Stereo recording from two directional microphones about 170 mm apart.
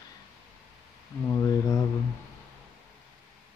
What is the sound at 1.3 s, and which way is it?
Speech, 20° left (ahead or behind).